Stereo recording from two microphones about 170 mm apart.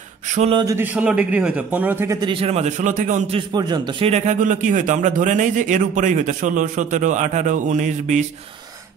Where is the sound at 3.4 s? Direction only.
25° right (ahead or behind).